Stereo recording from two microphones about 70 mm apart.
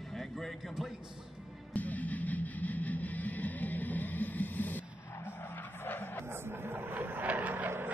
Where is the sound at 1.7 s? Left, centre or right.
Left.